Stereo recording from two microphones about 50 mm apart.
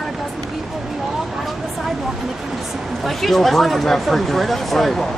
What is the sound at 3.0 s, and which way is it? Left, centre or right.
Speech, centre.